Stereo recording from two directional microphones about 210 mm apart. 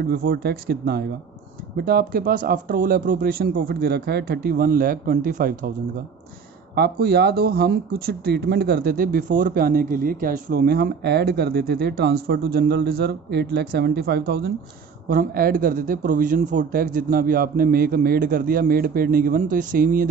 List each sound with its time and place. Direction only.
0.0 s speech: 45° right (ahead or behind)
6.7 s speech: 50° right (ahead or behind)